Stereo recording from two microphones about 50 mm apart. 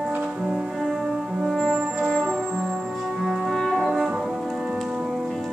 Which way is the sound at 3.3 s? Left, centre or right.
Centre.